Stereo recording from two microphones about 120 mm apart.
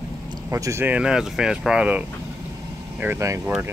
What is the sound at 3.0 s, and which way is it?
Speech, 20° right (ahead or behind).